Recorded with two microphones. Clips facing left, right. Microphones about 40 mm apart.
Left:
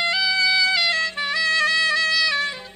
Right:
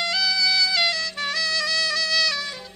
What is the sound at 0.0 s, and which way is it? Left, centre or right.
Music, left.